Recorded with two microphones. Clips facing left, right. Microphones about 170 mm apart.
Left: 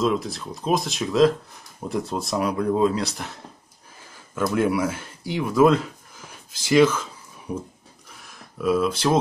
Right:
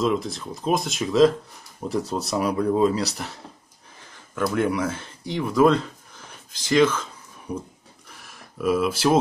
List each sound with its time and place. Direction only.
0.0 s speech: centre (ahead or behind)
4.4 s speech: 20° left (ahead or behind)
8.1 s a sound: centre (ahead or behind)